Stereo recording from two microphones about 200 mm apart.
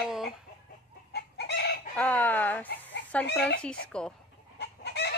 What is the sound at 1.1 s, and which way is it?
Chicken, 55° left (ahead or behind).